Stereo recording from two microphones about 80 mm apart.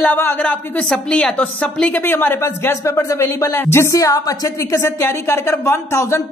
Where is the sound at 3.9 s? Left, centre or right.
Left.